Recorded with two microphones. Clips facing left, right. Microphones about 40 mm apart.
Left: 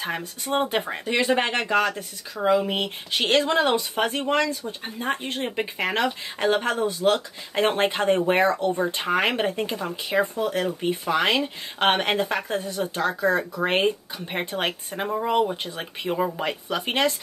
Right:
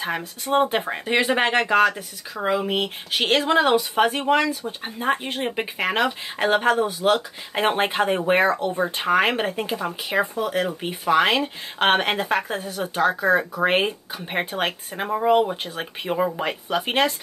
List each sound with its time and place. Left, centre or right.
0.0 s speech: centre
1.0 s speech: right
14.6 s speech: centre